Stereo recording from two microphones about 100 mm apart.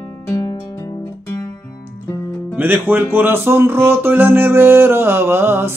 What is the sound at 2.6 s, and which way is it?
Music, 20° right (ahead or behind).